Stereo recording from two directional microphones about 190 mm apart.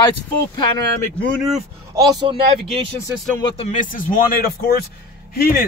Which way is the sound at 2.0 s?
25° right (ahead or behind).